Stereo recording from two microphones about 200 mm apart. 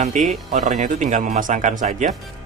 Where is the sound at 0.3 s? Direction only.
40° right (ahead or behind).